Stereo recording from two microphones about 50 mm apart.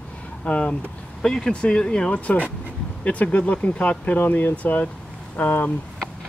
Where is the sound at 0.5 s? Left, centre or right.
Left.